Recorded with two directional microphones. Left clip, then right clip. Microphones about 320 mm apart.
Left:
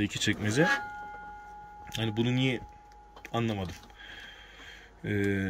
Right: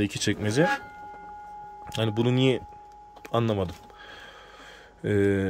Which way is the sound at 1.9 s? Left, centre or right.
Centre.